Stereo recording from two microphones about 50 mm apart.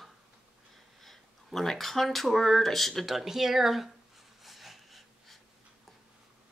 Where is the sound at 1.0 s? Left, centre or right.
Centre.